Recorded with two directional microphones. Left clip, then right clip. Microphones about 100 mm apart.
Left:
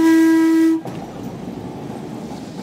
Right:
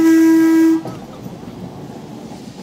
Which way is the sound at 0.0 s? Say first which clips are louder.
Right 2 dB; 25° left (ahead or behind).